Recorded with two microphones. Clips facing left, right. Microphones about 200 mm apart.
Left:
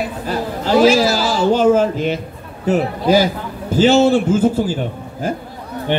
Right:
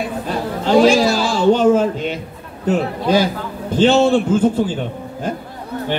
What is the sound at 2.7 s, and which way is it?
Speech, 5° left (ahead or behind).